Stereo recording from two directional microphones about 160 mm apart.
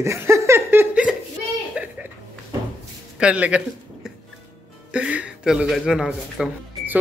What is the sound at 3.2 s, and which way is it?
Speech, 10° right (ahead or behind).